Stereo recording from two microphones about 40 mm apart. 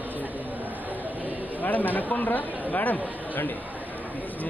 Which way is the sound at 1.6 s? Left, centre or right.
Left.